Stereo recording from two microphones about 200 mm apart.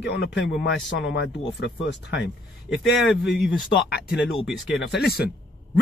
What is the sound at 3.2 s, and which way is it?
Speech, 55° left (ahead or behind).